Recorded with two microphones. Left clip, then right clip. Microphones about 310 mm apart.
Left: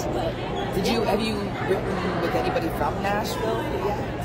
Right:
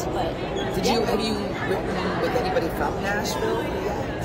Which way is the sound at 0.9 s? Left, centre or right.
Centre.